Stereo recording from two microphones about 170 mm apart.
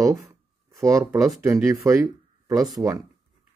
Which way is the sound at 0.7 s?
20° right (ahead or behind).